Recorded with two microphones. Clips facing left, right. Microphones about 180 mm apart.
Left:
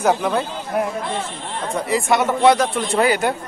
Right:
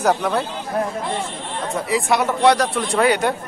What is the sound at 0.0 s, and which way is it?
Speech, centre (ahead or behind).